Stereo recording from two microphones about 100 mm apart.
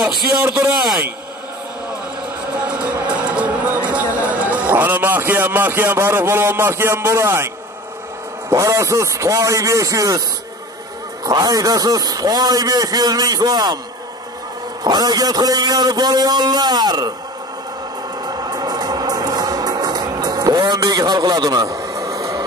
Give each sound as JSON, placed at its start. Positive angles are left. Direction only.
{"t": 0.4, "sound": "a man's voice", "side_deg": -15}
{"t": 2.6, "sound": "music", "side_deg": -15}
{"t": 8.5, "sound": "a man's voice", "side_deg": -30}
{"t": 11.2, "sound": "a man's voice", "side_deg": -40}
{"t": 14.8, "sound": "a man's voice", "side_deg": -45}
{"t": 18.2, "sound": "music", "side_deg": -45}